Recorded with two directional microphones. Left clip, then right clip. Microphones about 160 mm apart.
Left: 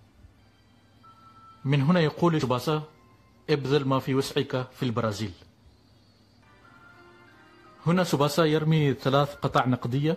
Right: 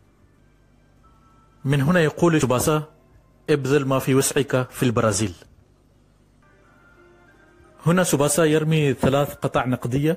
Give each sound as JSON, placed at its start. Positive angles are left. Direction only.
{"t": 1.6, "sound": "a man's voice", "side_deg": -15}
{"t": 7.8, "sound": "a man's voice", "side_deg": -20}